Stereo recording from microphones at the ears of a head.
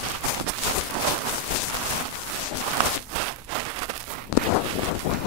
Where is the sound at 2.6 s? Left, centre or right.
Right.